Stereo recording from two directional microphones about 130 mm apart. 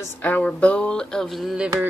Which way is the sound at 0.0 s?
15° left (ahead or behind).